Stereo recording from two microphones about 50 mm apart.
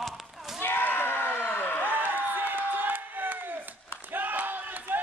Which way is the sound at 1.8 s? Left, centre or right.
Right.